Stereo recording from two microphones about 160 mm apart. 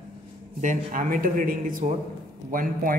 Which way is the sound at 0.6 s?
55° right (ahead or behind).